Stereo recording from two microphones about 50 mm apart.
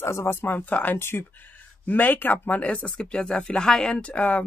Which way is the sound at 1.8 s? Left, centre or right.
Left.